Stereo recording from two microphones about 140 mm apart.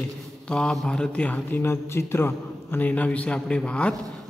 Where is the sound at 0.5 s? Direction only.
5° left (ahead or behind).